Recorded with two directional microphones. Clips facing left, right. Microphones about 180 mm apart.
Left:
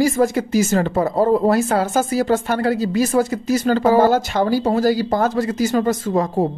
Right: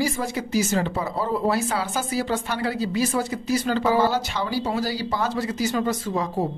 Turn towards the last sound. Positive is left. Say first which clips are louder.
# left 6 dB
turn(degrees=50)  # may be behind; listen again after turning